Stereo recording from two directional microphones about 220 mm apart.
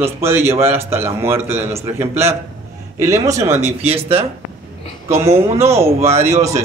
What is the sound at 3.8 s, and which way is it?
Speech, 25° right (ahead or behind).